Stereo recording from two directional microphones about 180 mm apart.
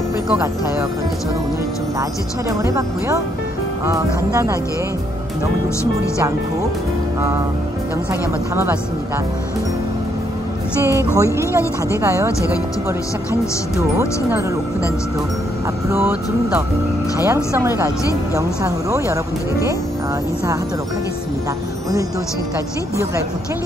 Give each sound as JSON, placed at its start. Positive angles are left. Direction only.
{"t": 2.6, "sound": "speech", "side_deg": -15}
{"t": 8.1, "sound": "speech", "side_deg": -10}
{"t": 10.9, "sound": "speech", "side_deg": -15}
{"t": 13.7, "sound": "speech", "side_deg": -15}
{"t": 15.9, "sound": "speech", "side_deg": -10}